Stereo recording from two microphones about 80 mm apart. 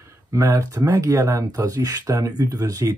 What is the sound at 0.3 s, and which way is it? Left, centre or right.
Speech, right.